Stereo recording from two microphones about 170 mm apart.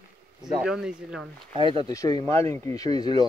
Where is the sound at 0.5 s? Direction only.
5° right (ahead or behind).